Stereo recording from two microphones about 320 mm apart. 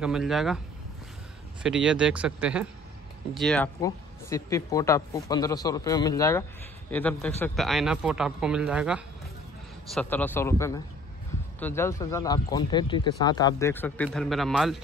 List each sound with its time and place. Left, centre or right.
0.0 s speech: centre
1.6 s speech: centre